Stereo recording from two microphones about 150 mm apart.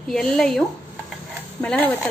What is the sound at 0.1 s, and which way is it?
Speech, 5° left (ahead or behind).